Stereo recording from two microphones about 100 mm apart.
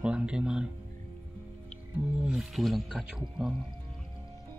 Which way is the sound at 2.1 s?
10° right (ahead or behind).